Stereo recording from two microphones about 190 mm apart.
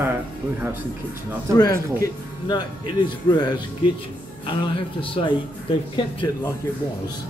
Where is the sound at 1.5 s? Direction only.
20° left (ahead or behind).